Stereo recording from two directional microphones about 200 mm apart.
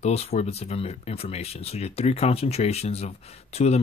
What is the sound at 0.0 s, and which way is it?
Speech, 30° left (ahead or behind).